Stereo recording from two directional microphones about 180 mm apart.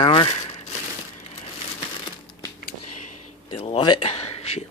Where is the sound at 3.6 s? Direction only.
35° left (ahead or behind).